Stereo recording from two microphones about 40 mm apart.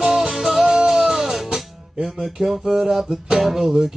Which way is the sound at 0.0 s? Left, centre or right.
Centre.